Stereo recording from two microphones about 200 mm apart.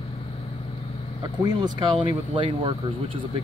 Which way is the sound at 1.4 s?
20° right (ahead or behind).